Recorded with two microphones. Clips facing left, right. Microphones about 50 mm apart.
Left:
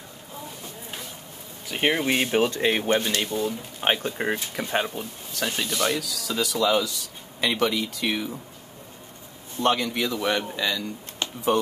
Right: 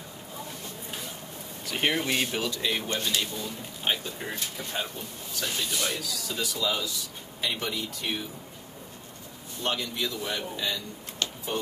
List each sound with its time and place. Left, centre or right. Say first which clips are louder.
1.7 s speech: left 4 dB; centre
2.4 s speech: left 7 dB; left
3.4 s speech: left 6 dB; left
9.6 s speech: left 7 dB; left
10.1 s speech: left 7 dB; left